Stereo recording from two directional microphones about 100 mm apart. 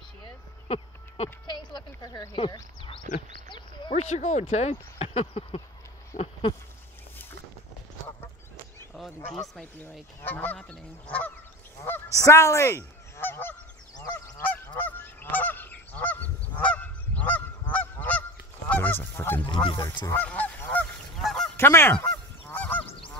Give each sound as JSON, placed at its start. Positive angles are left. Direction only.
{"t": 0.7, "sound": "a sound", "side_deg": 80}
{"t": 1.5, "sound": "a sound", "side_deg": 50}
{"t": 2.4, "sound": "a sound", "side_deg": 55}
{"t": 4.5, "sound": "speech", "side_deg": 90}
{"t": 8.9, "sound": "speech", "side_deg": 0}
{"t": 10.2, "sound": "goose", "side_deg": 15}
{"t": 11.8, "sound": "goose", "side_deg": 25}
{"t": 19.6, "sound": "goose", "side_deg": 55}
{"t": 20.2, "sound": "honk", "side_deg": 15}
{"t": 21.2, "sound": "goose", "side_deg": 0}
{"t": 21.5, "sound": "goose", "side_deg": 25}
{"t": 21.9, "sound": "goose", "side_deg": 15}